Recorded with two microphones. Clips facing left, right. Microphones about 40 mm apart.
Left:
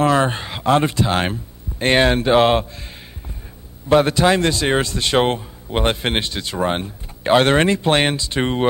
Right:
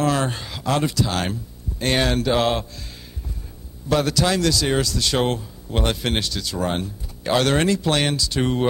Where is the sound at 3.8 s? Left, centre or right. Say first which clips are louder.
Left 6 dB; left.